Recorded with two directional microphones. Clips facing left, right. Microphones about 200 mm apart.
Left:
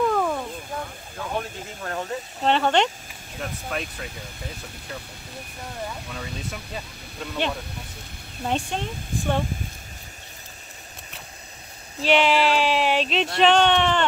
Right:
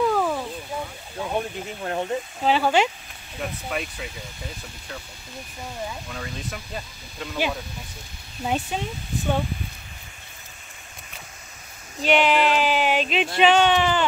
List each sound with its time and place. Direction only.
0.0 s a sound: 5° right (ahead or behind)
1.1 s speech: 20° right (ahead or behind)
2.4 s speech: 5° right (ahead or behind)
6.1 s speech: centre (ahead or behind)
12.0 s speech: centre (ahead or behind)